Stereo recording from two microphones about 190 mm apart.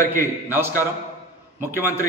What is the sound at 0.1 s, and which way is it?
Speech, 10° right (ahead or behind).